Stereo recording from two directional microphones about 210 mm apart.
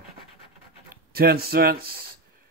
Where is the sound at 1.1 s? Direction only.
45° right (ahead or behind).